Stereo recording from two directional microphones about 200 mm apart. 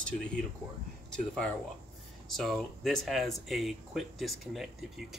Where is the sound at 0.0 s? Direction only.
5° left (ahead or behind).